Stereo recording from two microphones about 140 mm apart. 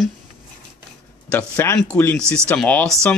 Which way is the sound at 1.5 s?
20° left (ahead or behind).